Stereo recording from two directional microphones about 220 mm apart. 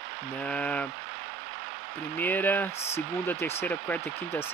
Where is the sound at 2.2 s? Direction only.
10° left (ahead or behind).